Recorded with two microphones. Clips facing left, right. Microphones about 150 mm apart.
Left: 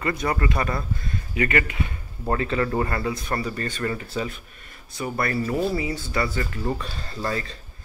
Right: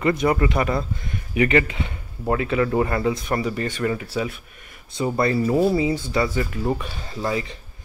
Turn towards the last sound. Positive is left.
turn(degrees=-15)  # may be behind; listen again after turning